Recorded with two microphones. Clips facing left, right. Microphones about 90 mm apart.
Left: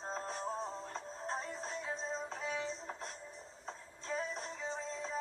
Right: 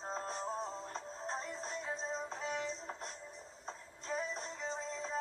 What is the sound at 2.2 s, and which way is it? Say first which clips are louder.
Music: even; 20° right (ahead or behind).